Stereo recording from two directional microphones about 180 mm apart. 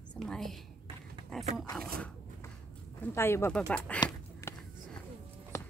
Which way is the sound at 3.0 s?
15° left (ahead or behind).